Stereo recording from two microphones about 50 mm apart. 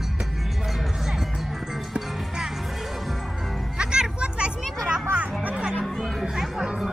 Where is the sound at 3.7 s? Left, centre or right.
Centre.